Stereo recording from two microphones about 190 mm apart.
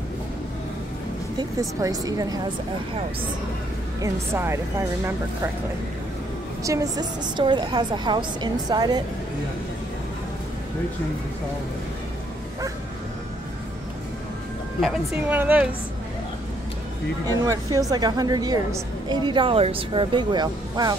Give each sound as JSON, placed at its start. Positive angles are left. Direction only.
{"t": 1.4, "sound": "a woman's voice", "side_deg": -20}
{"t": 4.0, "sound": "speech", "side_deg": -15}
{"t": 6.6, "sound": "a woman's voice", "side_deg": -15}
{"t": 14.8, "sound": "speech", "side_deg": -5}
{"t": 17.5, "sound": "a woman's voice", "side_deg": -15}